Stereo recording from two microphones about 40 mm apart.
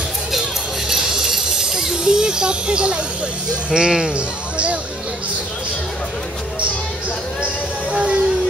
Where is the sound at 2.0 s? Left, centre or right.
Centre.